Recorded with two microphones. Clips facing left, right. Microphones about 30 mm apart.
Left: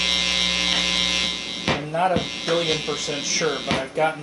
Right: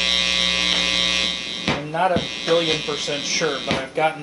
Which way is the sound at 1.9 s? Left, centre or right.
Centre.